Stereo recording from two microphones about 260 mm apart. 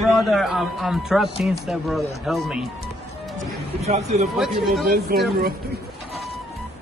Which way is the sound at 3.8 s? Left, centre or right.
Right.